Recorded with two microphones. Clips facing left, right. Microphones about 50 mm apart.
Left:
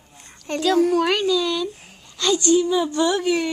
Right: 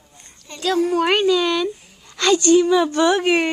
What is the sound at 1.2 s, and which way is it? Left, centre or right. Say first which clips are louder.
A woman's voice: right 3 dB; right.